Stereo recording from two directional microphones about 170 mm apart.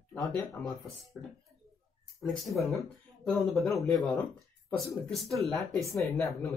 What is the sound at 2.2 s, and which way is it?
Speech, centre (ahead or behind).